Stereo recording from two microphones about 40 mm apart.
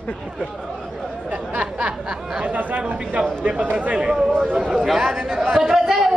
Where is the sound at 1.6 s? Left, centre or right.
Right.